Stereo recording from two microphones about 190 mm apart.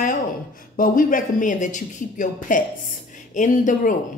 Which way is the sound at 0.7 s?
45° left (ahead or behind).